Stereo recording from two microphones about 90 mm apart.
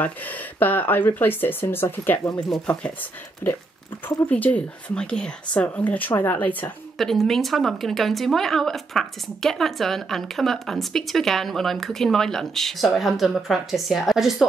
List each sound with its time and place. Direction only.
0.0 s speech: 20° left (ahead or behind)
2.6 s speech: 15° left (ahead or behind)
7.0 s a woman's voice: centre (ahead or behind)